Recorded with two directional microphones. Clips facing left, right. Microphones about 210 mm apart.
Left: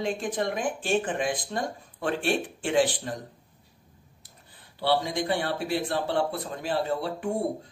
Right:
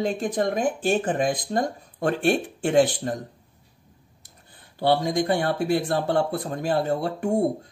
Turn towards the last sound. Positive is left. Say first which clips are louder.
# right 5 dB
turn(degrees=-45)  # may be behind; listen again after turning